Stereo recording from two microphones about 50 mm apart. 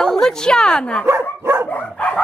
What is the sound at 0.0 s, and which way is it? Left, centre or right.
Speech, centre.